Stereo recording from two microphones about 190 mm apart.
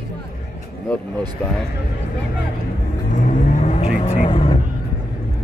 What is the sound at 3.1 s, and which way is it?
Vehicle, 40° left (ahead or behind).